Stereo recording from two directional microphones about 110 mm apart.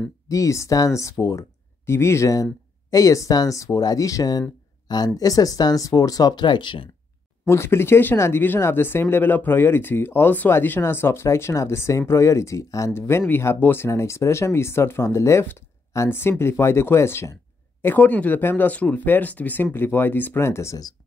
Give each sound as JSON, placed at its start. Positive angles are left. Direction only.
{"t": 0.3, "sound": "speech", "side_deg": 30}
{"t": 7.4, "sound": "speech", "side_deg": 20}